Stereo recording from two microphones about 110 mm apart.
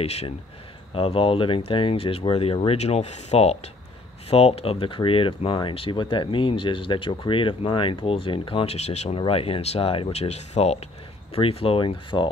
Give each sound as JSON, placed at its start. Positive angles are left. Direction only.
{"t": 0.0, "sound": "speech", "side_deg": 70}
{"t": 0.9, "sound": "speech", "side_deg": 55}
{"t": 9.2, "sound": "speech", "side_deg": 60}
{"t": 10.1, "sound": "speech", "side_deg": 80}
{"t": 11.3, "sound": "speech", "side_deg": 60}